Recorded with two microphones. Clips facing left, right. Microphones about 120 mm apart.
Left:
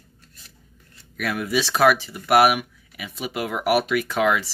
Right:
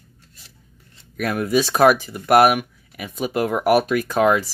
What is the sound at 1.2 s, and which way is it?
Speech, 45° right (ahead or behind).